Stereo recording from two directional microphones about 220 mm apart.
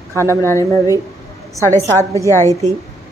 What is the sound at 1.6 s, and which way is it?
Speech, 10° left (ahead or behind).